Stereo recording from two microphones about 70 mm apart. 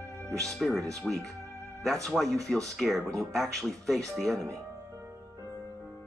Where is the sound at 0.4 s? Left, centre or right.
Centre.